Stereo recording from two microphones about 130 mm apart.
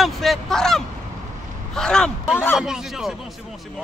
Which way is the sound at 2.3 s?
15° left (ahead or behind).